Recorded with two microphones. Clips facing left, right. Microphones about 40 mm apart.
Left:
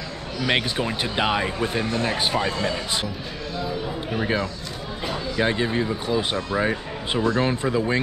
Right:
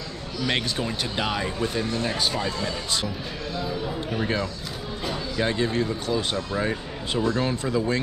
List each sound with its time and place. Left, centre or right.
0.4 s speech: left
3.5 s speech: centre; by 8.0 s left